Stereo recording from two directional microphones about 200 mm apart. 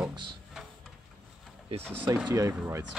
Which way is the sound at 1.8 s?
10° right (ahead or behind).